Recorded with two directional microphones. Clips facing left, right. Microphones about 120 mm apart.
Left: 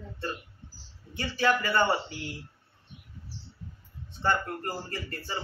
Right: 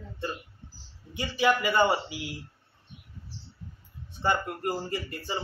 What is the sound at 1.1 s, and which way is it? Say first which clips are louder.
Speech: right 1 dB; 15° right (ahead or behind).